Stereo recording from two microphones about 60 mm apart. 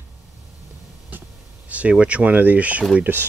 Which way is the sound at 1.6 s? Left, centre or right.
Right.